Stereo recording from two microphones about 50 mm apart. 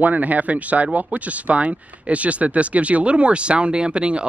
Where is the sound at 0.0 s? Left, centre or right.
Right.